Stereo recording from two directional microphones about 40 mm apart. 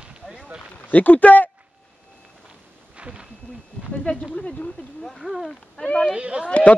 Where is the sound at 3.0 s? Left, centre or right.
Right.